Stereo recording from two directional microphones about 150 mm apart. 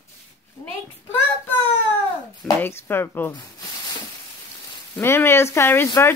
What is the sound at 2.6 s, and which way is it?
Speech, 15° left (ahead or behind).